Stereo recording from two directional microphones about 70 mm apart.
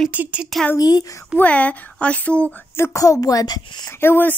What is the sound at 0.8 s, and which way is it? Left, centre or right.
Speech, left.